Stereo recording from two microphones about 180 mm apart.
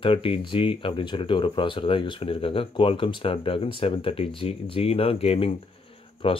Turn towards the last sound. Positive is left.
turn(degrees=30)  # may be behind; listen again after turning